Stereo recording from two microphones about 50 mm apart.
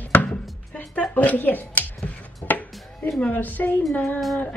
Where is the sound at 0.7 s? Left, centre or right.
Left.